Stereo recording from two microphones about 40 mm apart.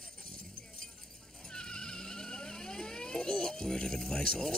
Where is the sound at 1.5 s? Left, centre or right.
Centre.